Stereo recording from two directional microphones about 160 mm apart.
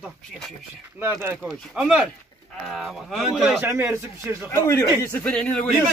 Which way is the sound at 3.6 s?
15° right (ahead or behind).